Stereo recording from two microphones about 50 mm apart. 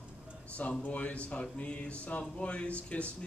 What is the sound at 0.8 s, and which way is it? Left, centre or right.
A man's voice, left.